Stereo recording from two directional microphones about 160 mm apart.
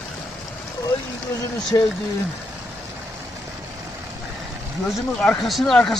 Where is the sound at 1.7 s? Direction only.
20° left (ahead or behind).